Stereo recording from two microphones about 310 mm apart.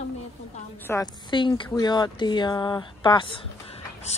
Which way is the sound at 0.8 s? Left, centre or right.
Centre.